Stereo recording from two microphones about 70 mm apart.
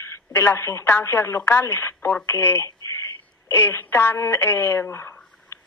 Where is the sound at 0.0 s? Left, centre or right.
Left.